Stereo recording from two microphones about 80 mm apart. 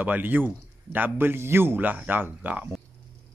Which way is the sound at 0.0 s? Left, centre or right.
Right.